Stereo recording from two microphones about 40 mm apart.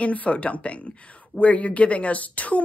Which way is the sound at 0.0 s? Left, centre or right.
Left.